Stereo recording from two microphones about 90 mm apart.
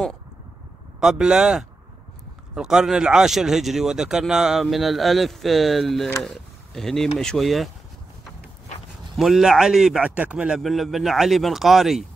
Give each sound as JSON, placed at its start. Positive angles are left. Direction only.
{"t": 0.9, "sound": "speech", "side_deg": -10}
{"t": 9.1, "sound": "speech", "side_deg": -5}